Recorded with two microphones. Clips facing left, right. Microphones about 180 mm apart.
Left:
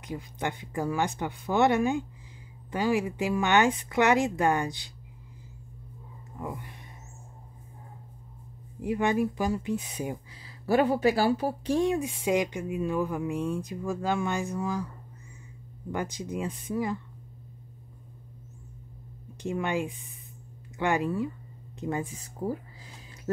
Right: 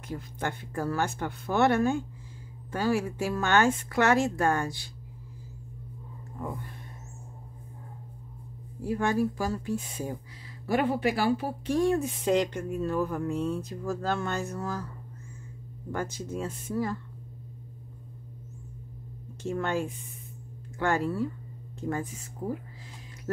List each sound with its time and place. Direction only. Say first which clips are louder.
0.0 s speech: left 1 dB; 15° left (ahead or behind)
6.3 s speech: even; 10° left (ahead or behind)
8.8 s speech: left 1 dB; 15° left (ahead or behind)
10.7 s speech: left 3 dB; 40° left (ahead or behind)
11.8 s speech: right 4 dB; 15° left (ahead or behind)
15.9 s speech: left 1 dB; 15° left (ahead or behind)
19.4 s speech: even; 15° left (ahead or behind)
22.0 s speech: left 2 dB; 35° left (ahead or behind)